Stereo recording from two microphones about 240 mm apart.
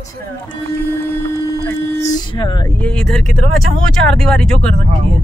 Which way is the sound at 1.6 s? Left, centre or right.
Centre.